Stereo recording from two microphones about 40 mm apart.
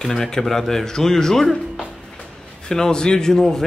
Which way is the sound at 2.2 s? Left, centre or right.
Centre.